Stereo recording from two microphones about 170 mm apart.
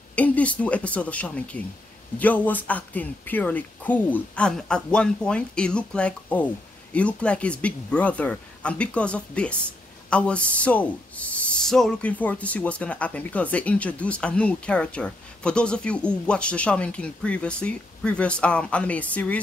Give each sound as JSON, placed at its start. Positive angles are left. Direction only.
{"t": 0.1, "sound": "speech", "side_deg": 10}